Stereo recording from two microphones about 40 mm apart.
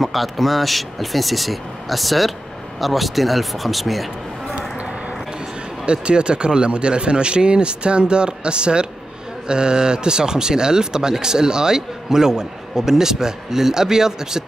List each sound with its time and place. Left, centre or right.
0.0 s speech: centre
5.9 s speech: right